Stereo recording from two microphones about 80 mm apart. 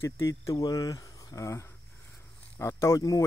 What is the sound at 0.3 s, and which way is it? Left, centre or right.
Speech, left.